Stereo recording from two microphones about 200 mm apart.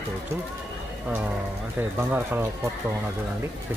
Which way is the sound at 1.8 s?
10° right (ahead or behind).